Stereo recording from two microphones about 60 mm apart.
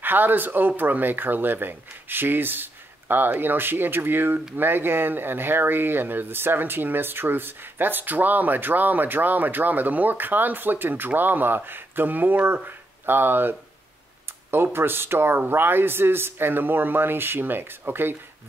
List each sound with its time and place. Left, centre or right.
0.0 s speech: right